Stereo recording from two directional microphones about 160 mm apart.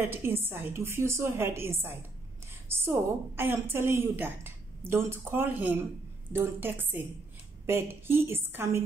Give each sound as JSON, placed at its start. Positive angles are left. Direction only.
{"t": 0.0, "sound": "a woman's voice", "side_deg": -15}